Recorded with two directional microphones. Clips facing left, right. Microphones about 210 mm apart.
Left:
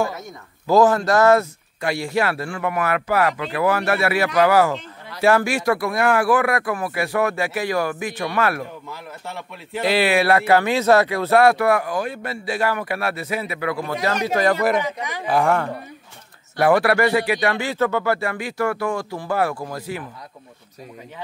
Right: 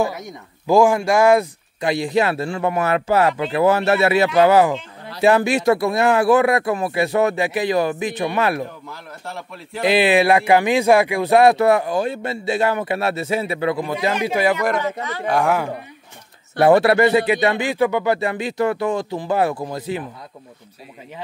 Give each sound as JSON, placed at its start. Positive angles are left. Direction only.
{"t": 0.0, "sound": "speech", "side_deg": -15}
{"t": 9.8, "sound": "speech", "side_deg": -20}
{"t": 14.2, "sound": "speech", "side_deg": -10}
{"t": 14.8, "sound": "speech", "side_deg": 15}
{"t": 15.2, "sound": "speech", "side_deg": 0}
{"t": 16.5, "sound": "speech", "side_deg": -25}